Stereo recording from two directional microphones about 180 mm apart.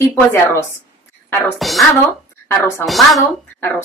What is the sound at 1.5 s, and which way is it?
Speech, centre (ahead or behind).